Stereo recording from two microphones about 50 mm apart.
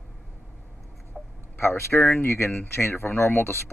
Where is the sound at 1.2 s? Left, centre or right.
Centre.